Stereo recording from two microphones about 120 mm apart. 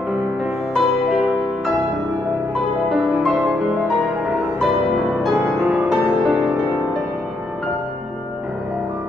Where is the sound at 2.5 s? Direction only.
Centre (ahead or behind).